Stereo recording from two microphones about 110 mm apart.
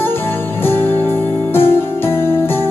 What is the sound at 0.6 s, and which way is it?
Music, 20° left (ahead or behind).